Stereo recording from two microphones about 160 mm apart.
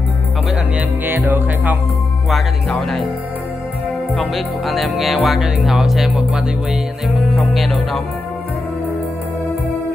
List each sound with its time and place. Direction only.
0.7 s music: 10° right (ahead or behind)
2.2 s speech: centre (ahead or behind)
4.1 s speech: centre (ahead or behind)